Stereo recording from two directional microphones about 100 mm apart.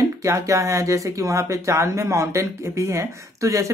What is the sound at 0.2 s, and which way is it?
Speech, 30° right (ahead or behind).